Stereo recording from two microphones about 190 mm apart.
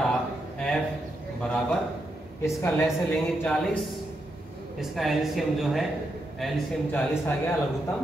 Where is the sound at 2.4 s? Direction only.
15° left (ahead or behind).